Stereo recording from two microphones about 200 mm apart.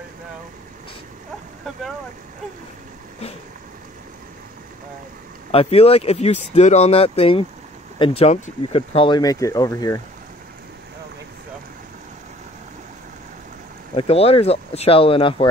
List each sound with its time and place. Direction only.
5.5 s speech: 30° left (ahead or behind)
13.9 s speech: 30° left (ahead or behind)